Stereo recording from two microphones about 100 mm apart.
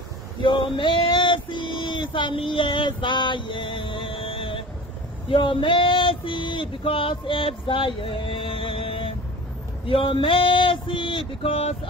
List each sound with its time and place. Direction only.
0.4 s male singing: 55° left (ahead or behind)
5.3 s female singing: 60° left (ahead or behind)